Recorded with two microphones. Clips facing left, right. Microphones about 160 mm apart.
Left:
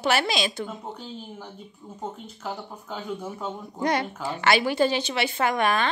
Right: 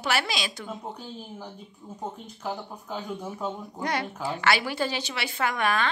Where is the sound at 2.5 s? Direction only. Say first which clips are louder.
Right 1 dB; centre (ahead or behind).